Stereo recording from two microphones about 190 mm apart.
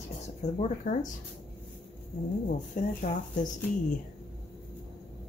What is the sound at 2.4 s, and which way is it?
Speech, 45° left (ahead or behind).